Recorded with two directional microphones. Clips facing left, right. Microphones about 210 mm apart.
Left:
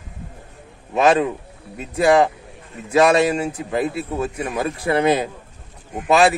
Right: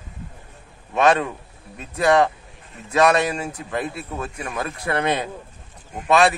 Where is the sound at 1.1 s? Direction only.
25° left (ahead or behind).